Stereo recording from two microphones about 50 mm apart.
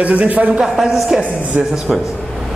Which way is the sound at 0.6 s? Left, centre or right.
Centre.